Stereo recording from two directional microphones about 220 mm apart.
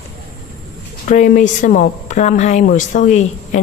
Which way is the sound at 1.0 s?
35° left (ahead or behind).